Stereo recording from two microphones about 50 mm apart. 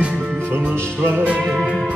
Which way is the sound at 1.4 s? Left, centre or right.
Centre.